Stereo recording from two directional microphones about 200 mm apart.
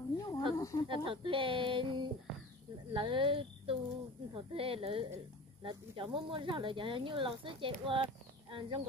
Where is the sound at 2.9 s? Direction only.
25° right (ahead or behind).